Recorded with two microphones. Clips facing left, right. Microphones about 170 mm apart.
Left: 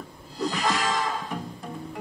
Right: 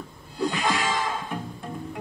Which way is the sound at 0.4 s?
Centre (ahead or behind).